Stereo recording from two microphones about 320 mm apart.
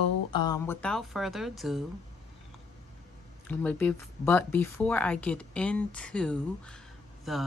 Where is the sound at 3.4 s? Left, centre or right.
Centre.